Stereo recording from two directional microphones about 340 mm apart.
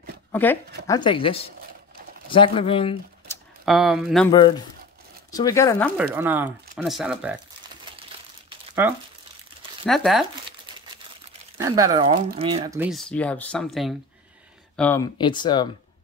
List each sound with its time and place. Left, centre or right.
0.3 s speech: centre
3.6 s speech: centre
4.3 s speech: centre
6.1 s speech: centre
8.5 s crumpling: centre
9.8 s speech: centre
11.5 s speech: centre